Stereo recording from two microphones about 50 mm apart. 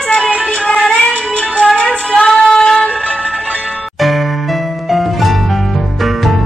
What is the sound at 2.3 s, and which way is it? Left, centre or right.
Female singing, centre.